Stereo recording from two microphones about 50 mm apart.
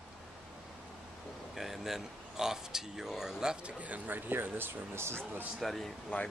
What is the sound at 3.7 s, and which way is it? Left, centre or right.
Speech, right.